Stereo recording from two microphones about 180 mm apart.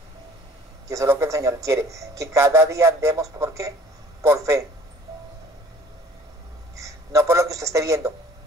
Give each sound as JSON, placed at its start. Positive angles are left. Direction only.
{"t": 0.8, "sound": "a man's voice", "side_deg": -15}
{"t": 6.8, "sound": "a man's voice", "side_deg": -15}